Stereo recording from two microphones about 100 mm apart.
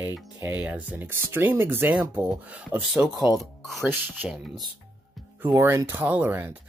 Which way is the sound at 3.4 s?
Centre (ahead or behind).